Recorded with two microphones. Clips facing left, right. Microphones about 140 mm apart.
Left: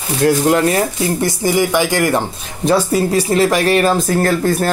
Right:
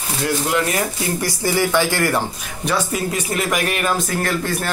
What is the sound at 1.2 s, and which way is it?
Speech, 20° left (ahead or behind).